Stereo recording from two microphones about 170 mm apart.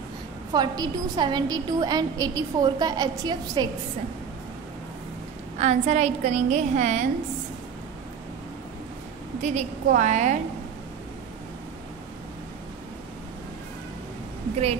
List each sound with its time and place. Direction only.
0.5 s a woman's voice: 25° right (ahead or behind)
5.6 s a woman's voice: 45° right (ahead or behind)
9.4 s a woman's voice: 45° right (ahead or behind)